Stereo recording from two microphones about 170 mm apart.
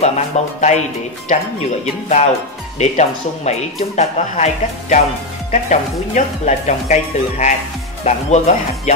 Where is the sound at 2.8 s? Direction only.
40° left (ahead or behind).